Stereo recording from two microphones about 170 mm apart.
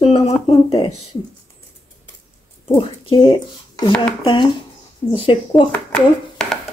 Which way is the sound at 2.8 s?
30° left (ahead or behind).